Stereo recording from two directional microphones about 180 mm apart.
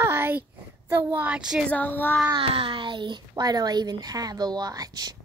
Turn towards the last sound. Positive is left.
turn(degrees=-20)  # may be behind; listen again after turning